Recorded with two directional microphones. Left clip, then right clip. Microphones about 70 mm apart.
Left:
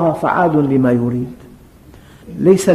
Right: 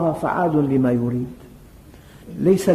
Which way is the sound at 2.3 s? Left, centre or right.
Left.